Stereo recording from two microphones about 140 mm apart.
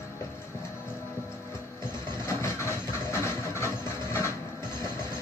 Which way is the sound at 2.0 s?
20° left (ahead or behind).